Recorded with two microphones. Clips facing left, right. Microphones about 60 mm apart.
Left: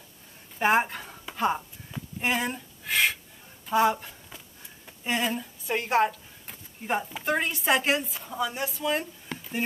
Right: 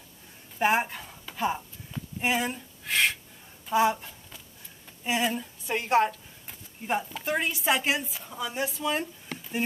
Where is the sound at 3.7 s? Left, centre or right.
Centre.